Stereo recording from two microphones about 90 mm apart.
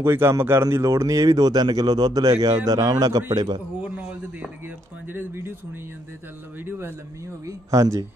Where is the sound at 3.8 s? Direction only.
15° right (ahead or behind).